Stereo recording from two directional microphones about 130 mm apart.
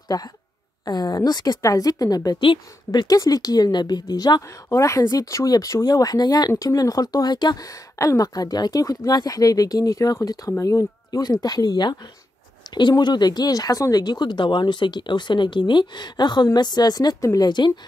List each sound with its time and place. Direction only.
0.1 s a woman's voice: 35° left (ahead or behind)